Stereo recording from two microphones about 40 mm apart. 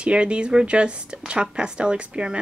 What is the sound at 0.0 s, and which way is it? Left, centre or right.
A woman's voice, right.